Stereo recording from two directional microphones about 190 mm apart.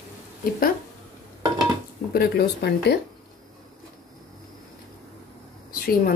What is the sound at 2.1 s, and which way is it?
Speech, 60° left (ahead or behind).